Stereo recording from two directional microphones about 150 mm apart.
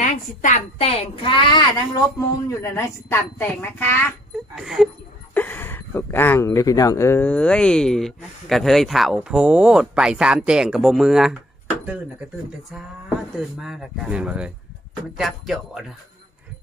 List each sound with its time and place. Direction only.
0.0 s a sound: 60° left (ahead or behind)
0.7 s a woman's voice: 40° left (ahead or behind)
2.1 s a woman's voice: 20° left (ahead or behind)
4.6 s speech: centre (ahead or behind)
5.3 s speech: 10° left (ahead or behind)
13.6 s speech: 5° right (ahead or behind)